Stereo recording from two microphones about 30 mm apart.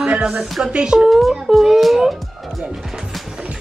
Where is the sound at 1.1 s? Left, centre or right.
Centre.